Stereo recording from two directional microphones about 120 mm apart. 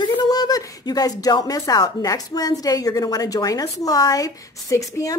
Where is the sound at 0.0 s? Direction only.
35° left (ahead or behind).